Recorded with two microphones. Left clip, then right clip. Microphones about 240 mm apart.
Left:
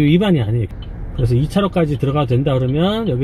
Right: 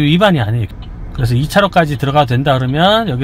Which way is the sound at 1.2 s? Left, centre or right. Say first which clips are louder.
Right 6 dB; right.